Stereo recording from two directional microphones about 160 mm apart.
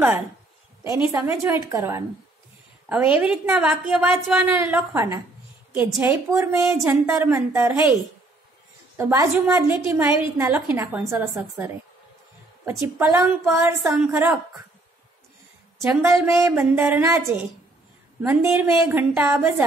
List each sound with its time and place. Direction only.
0.8 s a woman's voice: 30° left (ahead or behind)
1.2 s a woman's voice: 20° right (ahead or behind)
2.9 s a woman's voice: 10° right (ahead or behind)
8.9 s a woman's voice: 15° right (ahead or behind)
12.8 s a woman's voice: 15° right (ahead or behind)
13.8 s a woman's voice: 5° right (ahead or behind)
15.8 s a woman's voice: 15° right (ahead or behind)